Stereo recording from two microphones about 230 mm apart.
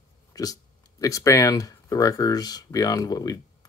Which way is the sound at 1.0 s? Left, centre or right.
Centre.